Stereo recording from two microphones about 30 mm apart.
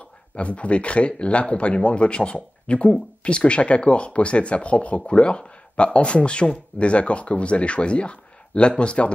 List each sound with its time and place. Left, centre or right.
0.4 s speech: left